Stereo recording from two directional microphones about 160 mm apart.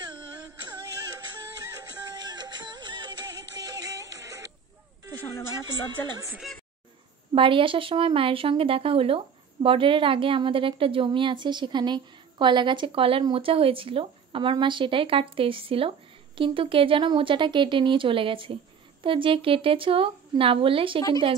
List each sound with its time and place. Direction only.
2.0 s music: 25° right (ahead or behind)
5.7 s speech: 25° right (ahead or behind)
6.3 s speech: centre (ahead or behind)
7.3 s speech: 30° right (ahead or behind)